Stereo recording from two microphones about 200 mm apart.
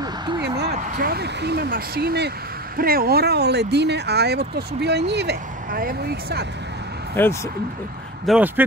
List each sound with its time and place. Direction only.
0.4 s a sound: 55° right (ahead or behind)
0.7 s speech: 45° right (ahead or behind)
7.2 s speech: 10° left (ahead or behind)
8.3 s speech: 5° right (ahead or behind)